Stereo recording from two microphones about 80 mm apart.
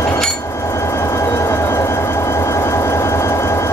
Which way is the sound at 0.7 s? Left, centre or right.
Left.